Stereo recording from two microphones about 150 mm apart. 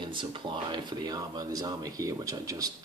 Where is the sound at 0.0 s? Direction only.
35° right (ahead or behind).